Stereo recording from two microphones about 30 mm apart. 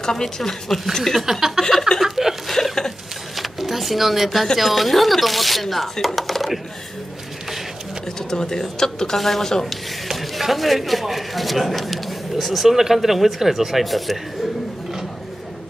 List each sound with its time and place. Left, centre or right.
0.0 s a man's voice: centre
1.2 s speech: centre
2.0 s a sound: centre
2.5 s a sound: centre
3.3 s a sound: centre
4.6 s a man's voice: centre
8.2 s speech: left
9.2 s speech: centre
10.0 s a man's voice: centre